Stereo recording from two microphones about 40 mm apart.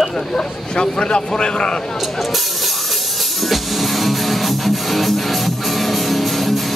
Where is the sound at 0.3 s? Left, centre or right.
Left.